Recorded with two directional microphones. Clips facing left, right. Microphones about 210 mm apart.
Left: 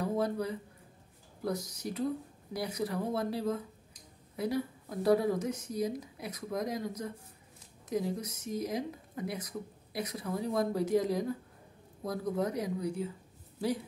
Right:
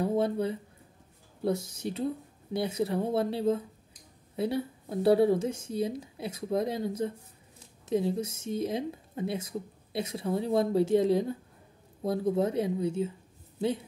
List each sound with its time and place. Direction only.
0.0 s speech: 25° right (ahead or behind)